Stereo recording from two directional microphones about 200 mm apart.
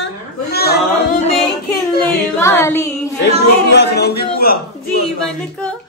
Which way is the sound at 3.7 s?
55° left (ahead or behind).